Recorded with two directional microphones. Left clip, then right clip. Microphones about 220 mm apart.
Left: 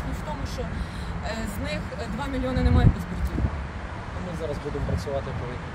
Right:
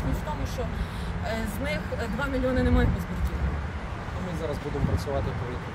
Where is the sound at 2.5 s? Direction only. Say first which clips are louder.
Right 1 dB; 15° left (ahead or behind).